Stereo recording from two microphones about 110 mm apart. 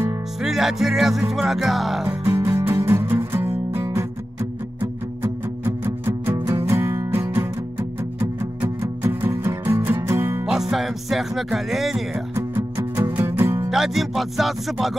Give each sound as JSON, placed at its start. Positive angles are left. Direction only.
{"t": 0.4, "sound": "music", "side_deg": -5}
{"t": 2.0, "sound": "music", "side_deg": -20}
{"t": 10.4, "sound": "speech", "side_deg": -5}
{"t": 13.1, "sound": "music", "side_deg": -20}
{"t": 13.7, "sound": "music", "side_deg": -5}